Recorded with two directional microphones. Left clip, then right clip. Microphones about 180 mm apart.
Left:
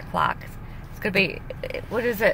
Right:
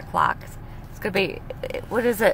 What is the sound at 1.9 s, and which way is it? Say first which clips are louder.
Speech: right 2 dB; centre (ahead or behind).